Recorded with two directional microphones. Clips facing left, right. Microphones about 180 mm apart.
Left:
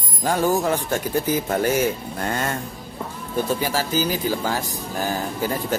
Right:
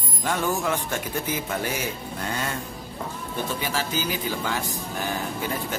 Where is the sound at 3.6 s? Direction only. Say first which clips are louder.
Left 5 dB; 40° left (ahead or behind).